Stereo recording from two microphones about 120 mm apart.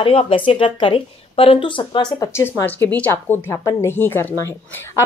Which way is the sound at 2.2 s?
25° left (ahead or behind).